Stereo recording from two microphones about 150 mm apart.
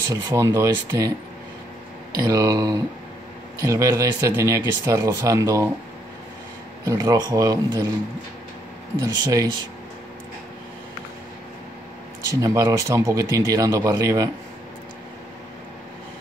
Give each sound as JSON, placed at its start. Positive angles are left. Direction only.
{"t": 0.1, "sound": "speech", "side_deg": -20}
{"t": 2.2, "sound": "speech", "side_deg": -25}
{"t": 6.8, "sound": "speech", "side_deg": -20}
{"t": 9.0, "sound": "speech", "side_deg": -25}
{"t": 12.4, "sound": "speech", "side_deg": -20}